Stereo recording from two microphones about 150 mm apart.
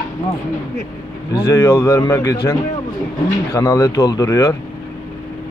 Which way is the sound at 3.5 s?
20° left (ahead or behind).